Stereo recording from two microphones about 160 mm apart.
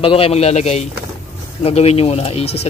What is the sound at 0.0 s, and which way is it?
Speech, 35° left (ahead or behind).